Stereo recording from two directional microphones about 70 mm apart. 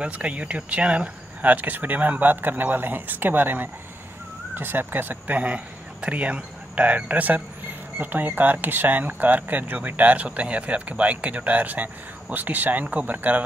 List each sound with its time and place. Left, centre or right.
0.0 s speech: centre